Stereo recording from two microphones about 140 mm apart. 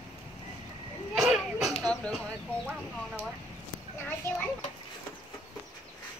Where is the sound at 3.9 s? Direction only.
15° left (ahead or behind).